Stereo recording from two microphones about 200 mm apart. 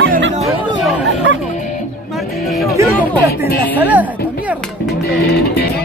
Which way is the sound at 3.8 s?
10° right (ahead or behind).